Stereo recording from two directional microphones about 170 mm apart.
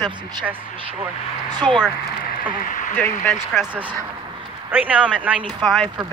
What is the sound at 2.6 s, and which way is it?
Speech, 50° left (ahead or behind).